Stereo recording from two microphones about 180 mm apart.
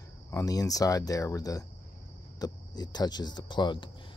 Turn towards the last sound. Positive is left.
turn(degrees=25)  # may be behind; listen again after turning